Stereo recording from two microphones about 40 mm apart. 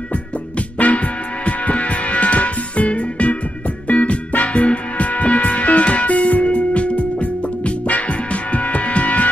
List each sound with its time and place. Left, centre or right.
0.7 s music: left